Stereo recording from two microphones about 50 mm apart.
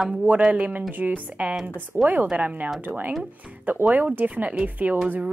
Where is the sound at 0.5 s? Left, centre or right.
Right.